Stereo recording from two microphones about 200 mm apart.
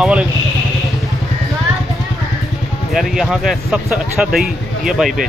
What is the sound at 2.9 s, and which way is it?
Speech, centre (ahead or behind).